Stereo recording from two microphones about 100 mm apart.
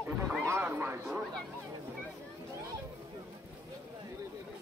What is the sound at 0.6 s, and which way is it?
Speech, 20° right (ahead or behind).